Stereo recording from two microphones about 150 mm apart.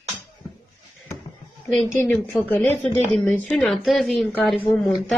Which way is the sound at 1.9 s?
15° left (ahead or behind).